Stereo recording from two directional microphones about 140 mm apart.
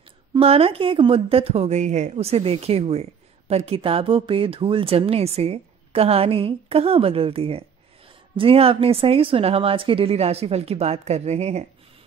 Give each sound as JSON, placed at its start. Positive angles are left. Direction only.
{"t": 0.3, "sound": "a woman's voice", "side_deg": -45}